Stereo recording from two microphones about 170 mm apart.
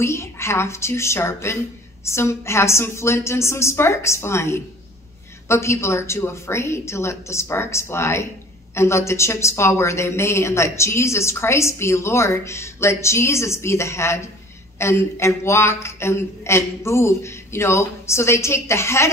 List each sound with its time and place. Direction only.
0.0 s a woman's voice: 15° left (ahead or behind)